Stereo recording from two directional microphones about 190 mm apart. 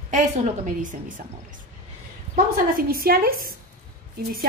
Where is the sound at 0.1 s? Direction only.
40° right (ahead or behind).